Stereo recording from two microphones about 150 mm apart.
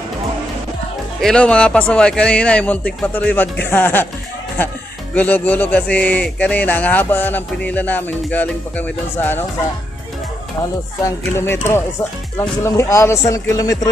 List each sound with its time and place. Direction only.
1.2 s speech: 5° left (ahead or behind)
5.1 s speech: 10° left (ahead or behind)
11.1 s speech: 15° left (ahead or behind)